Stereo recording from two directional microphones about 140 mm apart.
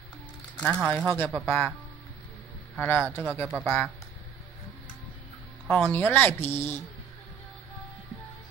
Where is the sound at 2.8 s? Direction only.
15° left (ahead or behind).